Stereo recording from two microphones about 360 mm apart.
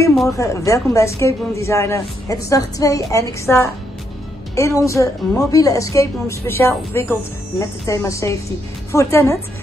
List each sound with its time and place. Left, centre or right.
0.0 s a woman's voice: centre